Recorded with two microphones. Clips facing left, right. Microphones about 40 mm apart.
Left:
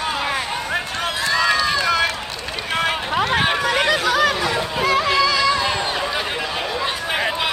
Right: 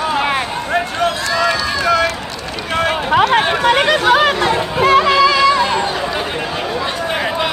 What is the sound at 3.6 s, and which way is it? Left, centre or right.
Speech, right.